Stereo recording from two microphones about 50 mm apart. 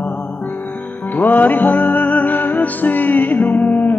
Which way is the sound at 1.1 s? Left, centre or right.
Left.